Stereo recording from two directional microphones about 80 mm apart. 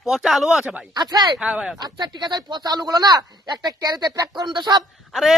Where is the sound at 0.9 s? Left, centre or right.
Right.